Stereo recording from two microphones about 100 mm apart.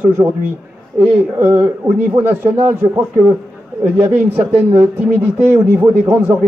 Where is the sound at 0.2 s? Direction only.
40° right (ahead or behind).